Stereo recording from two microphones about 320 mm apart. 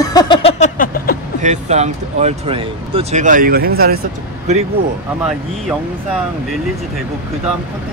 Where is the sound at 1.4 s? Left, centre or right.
Right.